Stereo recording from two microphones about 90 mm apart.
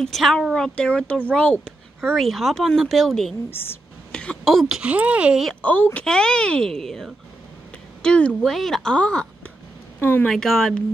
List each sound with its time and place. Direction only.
0.0 s speech: 5° left (ahead or behind)
3.4 s speech: 25° left (ahead or behind)
4.1 s speech: 10° left (ahead or behind)
4.8 s speech: 15° right (ahead or behind)
5.6 s speech: 15° left (ahead or behind)
9.9 s speech: 20° left (ahead or behind)
10.2 s speech: 5° left (ahead or behind)